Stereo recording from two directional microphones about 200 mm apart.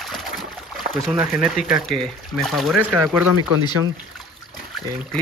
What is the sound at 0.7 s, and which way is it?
Speech, centre (ahead or behind).